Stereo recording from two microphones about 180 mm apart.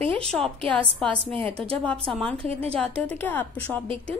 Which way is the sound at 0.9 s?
5° left (ahead or behind).